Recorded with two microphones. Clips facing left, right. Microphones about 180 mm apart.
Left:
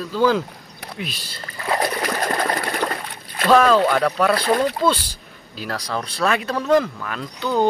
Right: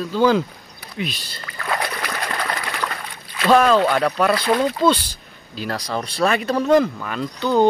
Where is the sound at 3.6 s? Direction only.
Centre (ahead or behind).